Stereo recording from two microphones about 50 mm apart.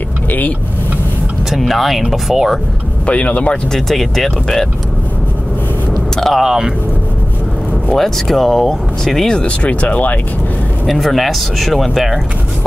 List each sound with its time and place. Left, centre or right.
1.5 s speech: centre
3.1 s speech: left
3.7 s speech: centre
6.1 s speech: centre
6.4 s speech: centre
7.9 s speech: centre
9.4 s speech: left
10.9 s speech: centre